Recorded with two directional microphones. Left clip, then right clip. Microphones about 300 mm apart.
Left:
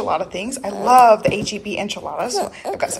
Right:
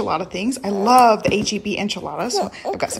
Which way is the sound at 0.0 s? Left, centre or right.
Centre.